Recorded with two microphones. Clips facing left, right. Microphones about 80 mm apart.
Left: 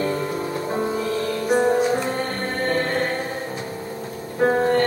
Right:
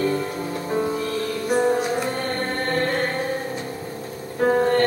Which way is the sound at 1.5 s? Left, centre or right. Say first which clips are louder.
Left 1 dB; centre.